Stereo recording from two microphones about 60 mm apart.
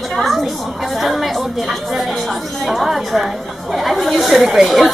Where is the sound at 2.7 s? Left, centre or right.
Centre.